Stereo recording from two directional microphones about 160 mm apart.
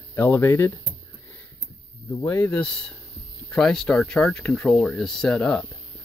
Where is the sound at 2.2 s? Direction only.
10° left (ahead or behind).